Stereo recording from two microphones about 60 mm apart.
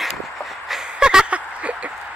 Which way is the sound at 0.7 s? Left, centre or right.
Centre.